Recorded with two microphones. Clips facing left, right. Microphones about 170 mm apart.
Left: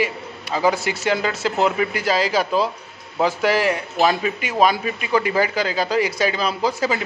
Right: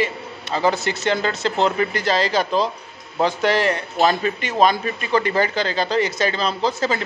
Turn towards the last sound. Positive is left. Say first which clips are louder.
# even
turn(degrees=10)  # may be behind; listen again after turning